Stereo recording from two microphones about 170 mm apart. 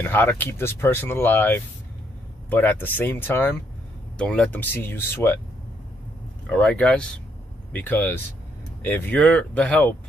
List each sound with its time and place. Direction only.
0.0 s speech: 10° left (ahead or behind)
6.5 s speech: 5° left (ahead or behind)